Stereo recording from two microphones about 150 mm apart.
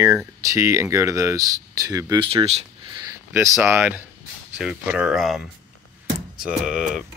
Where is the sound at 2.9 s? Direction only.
25° right (ahead or behind).